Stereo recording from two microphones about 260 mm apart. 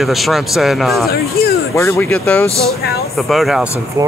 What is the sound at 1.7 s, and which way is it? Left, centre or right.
A man's voice, centre.